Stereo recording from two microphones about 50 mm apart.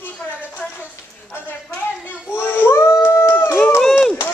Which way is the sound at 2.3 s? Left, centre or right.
Left.